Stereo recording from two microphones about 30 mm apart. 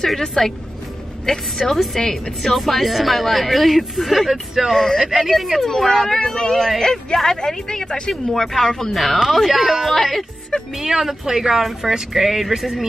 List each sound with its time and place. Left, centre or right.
0.0 s speech: centre
2.4 s speech: centre
5.3 s speech: centre
6.1 s speech: left
8.1 s speech: centre
9.5 s speech: centre
9.8 s speech: centre
10.8 s speech: centre